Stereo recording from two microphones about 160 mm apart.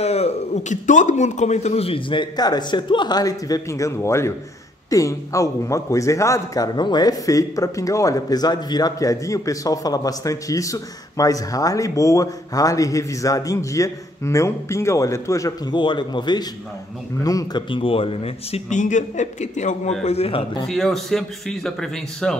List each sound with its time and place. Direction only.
0.0 s a man's voice: 40° left (ahead or behind)
20.6 s a man's voice: 5° left (ahead or behind)